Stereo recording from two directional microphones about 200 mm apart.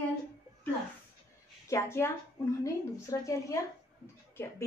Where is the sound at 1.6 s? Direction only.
15° left (ahead or behind).